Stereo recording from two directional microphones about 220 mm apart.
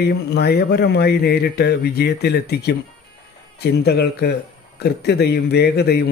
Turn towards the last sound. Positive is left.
turn(degrees=45)  # may be behind; listen again after turning